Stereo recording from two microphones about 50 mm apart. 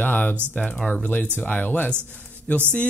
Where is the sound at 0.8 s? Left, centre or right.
Left.